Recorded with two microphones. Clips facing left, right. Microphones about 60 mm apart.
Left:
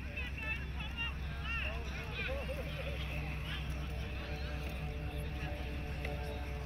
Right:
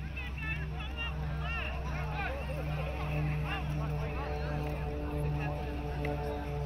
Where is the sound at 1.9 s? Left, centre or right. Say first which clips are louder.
Right 5 dB; right.